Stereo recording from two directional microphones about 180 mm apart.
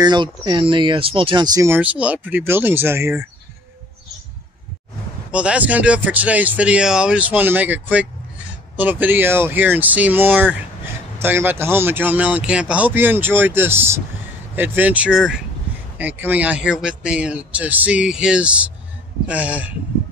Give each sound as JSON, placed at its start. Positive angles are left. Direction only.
{"t": 0.0, "sound": "speech", "side_deg": -25}
{"t": 5.3, "sound": "speech", "side_deg": -5}